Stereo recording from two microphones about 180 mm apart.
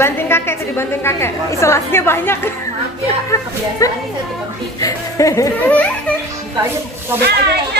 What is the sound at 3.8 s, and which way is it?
A woman's voice, 20° left (ahead or behind).